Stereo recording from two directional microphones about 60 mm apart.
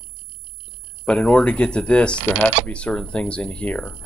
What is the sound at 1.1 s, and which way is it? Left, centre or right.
Speech, centre.